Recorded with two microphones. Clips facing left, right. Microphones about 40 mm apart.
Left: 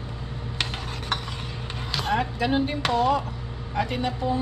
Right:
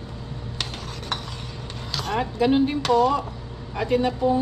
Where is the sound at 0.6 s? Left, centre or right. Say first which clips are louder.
Left 3 dB; centre.